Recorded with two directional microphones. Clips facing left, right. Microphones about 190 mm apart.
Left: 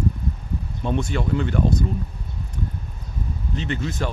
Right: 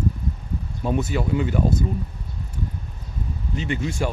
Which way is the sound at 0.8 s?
5° right (ahead or behind).